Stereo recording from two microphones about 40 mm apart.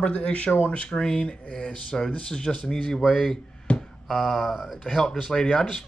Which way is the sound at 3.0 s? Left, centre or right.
Centre.